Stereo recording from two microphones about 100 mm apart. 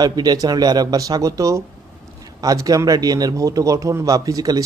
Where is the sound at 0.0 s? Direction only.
40° right (ahead or behind).